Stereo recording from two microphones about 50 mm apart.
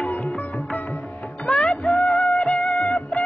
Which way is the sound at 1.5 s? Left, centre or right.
Left.